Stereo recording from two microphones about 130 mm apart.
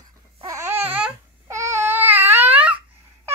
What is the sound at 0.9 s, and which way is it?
Babbling, 10° right (ahead or behind).